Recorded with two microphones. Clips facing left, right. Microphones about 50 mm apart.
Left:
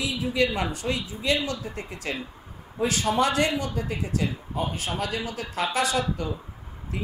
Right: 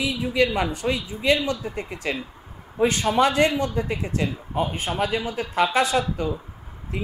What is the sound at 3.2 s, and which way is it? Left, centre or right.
Speech, centre.